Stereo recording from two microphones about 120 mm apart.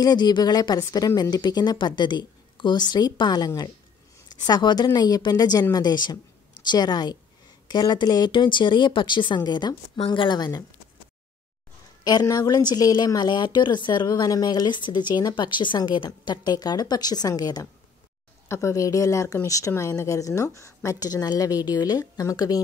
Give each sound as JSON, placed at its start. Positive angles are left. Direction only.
{"t": 0.0, "sound": "a woman's voice", "side_deg": 35}
{"t": 12.0, "sound": "a woman's voice", "side_deg": 35}